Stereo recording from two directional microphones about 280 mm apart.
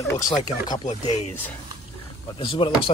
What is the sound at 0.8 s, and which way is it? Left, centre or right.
Speech, left.